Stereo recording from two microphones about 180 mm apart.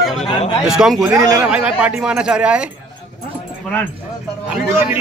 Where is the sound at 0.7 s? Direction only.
Centre (ahead or behind).